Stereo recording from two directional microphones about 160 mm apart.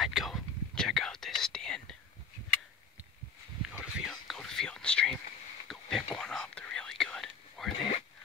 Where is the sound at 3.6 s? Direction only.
5° right (ahead or behind).